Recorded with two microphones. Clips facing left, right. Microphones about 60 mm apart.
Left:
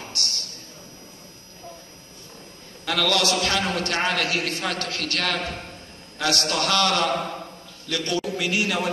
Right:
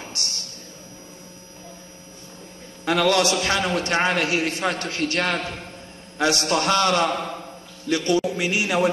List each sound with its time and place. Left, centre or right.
0.2 s speech: right
2.8 s a man's voice: right